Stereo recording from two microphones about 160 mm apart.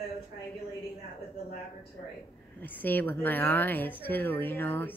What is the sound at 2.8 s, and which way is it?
Speech, 10° left (ahead or behind).